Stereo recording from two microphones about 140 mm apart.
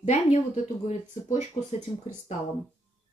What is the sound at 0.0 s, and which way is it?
A woman's voice, 55° left (ahead or behind).